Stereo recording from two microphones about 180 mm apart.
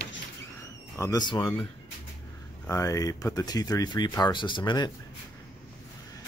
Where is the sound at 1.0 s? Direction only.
20° left (ahead or behind).